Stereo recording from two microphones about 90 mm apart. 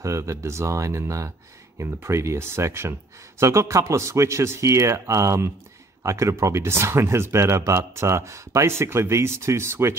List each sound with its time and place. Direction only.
0.0 s speech: 35° right (ahead or behind)